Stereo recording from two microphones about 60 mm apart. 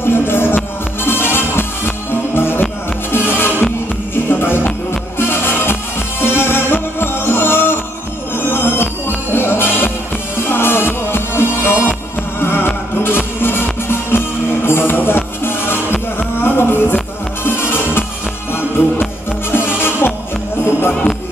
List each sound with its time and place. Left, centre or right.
0.0 s music: left
19.5 s music: left